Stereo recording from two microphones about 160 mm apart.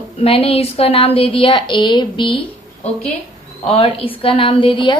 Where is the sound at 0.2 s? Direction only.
35° left (ahead or behind).